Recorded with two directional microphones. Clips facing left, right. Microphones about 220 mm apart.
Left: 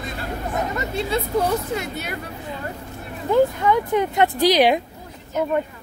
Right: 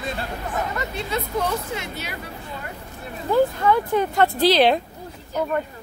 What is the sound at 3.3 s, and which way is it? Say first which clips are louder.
Speech: left 1 dB; 15° left (ahead or behind).